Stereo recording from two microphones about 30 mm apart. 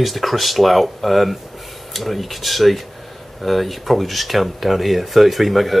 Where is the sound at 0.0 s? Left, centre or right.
Centre.